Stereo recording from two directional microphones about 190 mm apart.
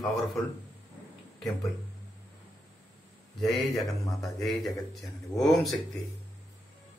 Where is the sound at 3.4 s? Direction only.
Centre (ahead or behind).